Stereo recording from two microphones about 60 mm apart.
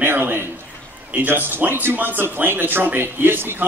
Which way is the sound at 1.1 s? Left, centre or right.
Right.